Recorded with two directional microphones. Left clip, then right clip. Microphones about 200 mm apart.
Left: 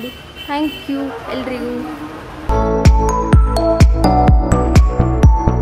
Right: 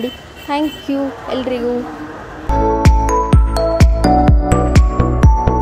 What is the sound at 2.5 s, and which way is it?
Music, centre (ahead or behind).